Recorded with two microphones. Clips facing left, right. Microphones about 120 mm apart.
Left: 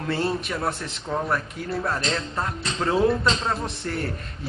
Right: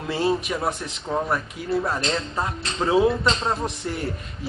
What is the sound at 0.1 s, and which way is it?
Speech, 10° right (ahead or behind).